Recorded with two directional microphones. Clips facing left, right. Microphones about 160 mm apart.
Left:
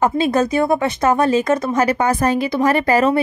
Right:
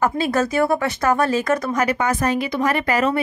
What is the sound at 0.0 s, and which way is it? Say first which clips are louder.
Speech: left 3 dB; 20° left (ahead or behind).